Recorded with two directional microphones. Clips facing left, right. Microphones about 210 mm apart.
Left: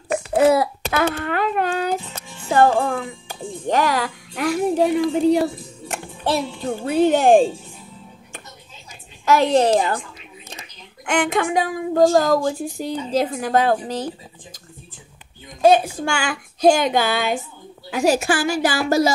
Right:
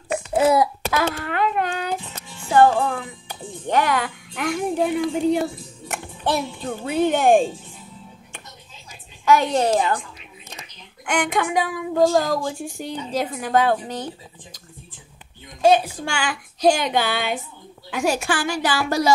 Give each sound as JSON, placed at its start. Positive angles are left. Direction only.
{"t": 0.3, "sound": "babbling", "side_deg": 65}
{"t": 1.1, "sound": "a sound", "side_deg": 35}
{"t": 2.5, "sound": "music", "side_deg": 45}
{"t": 5.9, "sound": "music", "side_deg": 25}
{"t": 6.9, "sound": "a woman's voice", "side_deg": 40}
{"t": 9.2, "sound": "a woman's voice", "side_deg": 40}
{"t": 11.1, "sound": "a woman's voice", "side_deg": 40}
{"t": 15.7, "sound": "a woman's voice", "side_deg": 50}